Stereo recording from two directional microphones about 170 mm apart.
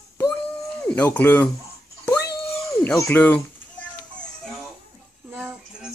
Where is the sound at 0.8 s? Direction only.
10° left (ahead or behind).